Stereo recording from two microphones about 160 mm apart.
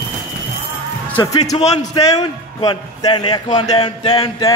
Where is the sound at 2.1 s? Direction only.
25° left (ahead or behind).